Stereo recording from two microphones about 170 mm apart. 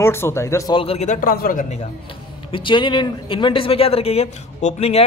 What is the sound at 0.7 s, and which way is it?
A man's voice, 35° left (ahead or behind).